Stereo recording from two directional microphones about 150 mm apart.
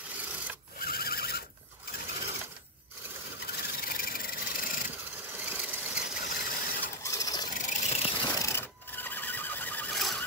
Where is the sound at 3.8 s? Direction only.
80° left.